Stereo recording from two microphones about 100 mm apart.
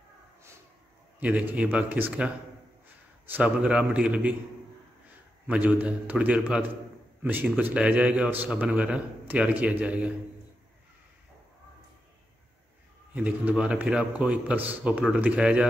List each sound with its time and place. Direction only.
1.5 s a man's voice: 15° right (ahead or behind)
5.5 s a man's voice: 15° right (ahead or behind)
13.1 s a man's voice: 15° right (ahead or behind)